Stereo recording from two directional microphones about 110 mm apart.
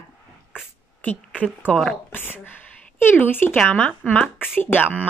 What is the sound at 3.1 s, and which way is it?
Speech, 20° left (ahead or behind).